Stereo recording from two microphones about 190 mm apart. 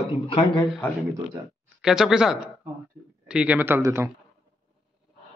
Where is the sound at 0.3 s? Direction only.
25° left (ahead or behind).